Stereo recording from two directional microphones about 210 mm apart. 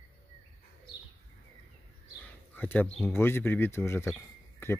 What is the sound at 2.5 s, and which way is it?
Speech, 10° left (ahead or behind).